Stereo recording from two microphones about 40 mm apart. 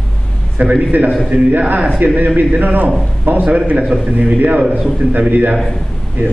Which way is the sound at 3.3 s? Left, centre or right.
Right.